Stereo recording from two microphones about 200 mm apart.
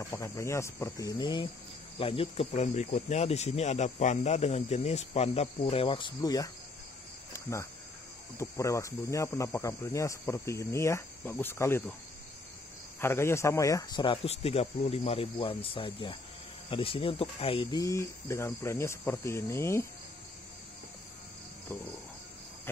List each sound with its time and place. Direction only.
0.0 s speech: 15° left (ahead or behind)
7.3 s cricket: 15° left (ahead or behind)
8.4 s speech: 15° left (ahead or behind)
13.0 s speech: 10° left (ahead or behind)